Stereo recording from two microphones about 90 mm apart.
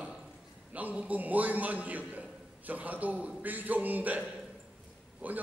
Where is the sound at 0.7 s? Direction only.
15° right (ahead or behind).